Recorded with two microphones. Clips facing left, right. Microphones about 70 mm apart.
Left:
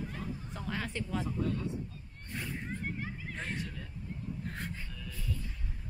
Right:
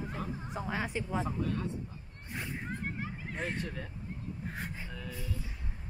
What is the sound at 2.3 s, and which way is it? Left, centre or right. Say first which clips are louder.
Speech: even; centre.